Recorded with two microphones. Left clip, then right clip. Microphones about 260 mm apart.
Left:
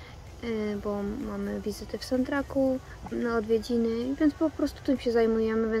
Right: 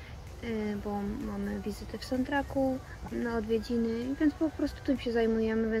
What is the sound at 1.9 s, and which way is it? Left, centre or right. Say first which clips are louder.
Speech: left 4 dB; centre.